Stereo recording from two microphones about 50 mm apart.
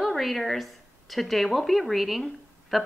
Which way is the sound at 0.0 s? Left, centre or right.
Centre.